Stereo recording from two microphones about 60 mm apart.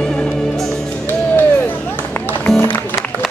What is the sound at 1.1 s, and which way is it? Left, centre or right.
Run, left.